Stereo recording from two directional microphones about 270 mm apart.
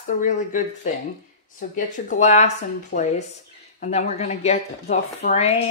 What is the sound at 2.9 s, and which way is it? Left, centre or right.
Speech, left.